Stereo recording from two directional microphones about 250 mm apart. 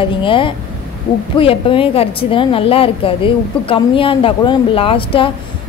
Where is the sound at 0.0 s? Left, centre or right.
Left.